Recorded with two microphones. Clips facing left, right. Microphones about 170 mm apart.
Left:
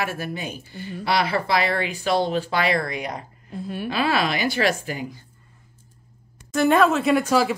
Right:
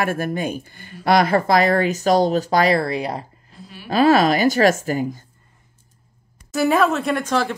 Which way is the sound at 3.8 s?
40° right (ahead or behind).